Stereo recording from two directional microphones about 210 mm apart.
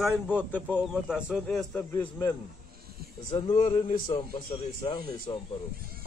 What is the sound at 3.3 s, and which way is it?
Speech, 25° left (ahead or behind).